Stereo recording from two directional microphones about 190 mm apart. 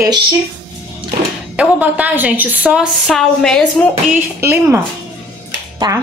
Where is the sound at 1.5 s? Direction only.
5° right (ahead or behind).